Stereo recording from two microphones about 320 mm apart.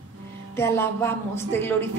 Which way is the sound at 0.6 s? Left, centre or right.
Centre.